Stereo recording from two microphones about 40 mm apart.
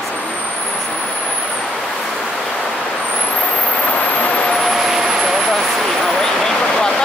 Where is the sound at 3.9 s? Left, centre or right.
Left.